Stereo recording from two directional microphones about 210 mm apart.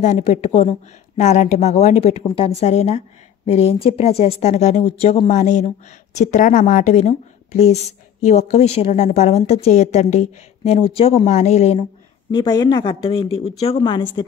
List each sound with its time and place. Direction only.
0.0 s a woman's voice: 35° left (ahead or behind)
12.3 s speech: 20° left (ahead or behind)